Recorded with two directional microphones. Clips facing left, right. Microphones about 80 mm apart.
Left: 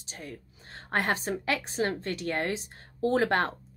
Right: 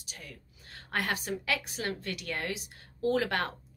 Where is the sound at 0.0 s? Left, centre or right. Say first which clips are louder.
Left 6 dB; left.